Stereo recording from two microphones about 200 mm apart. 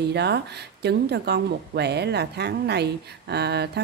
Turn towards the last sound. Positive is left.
turn(degrees=-55)  # may be behind; listen again after turning